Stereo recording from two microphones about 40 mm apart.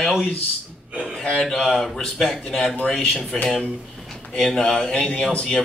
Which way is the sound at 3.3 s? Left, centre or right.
Centre.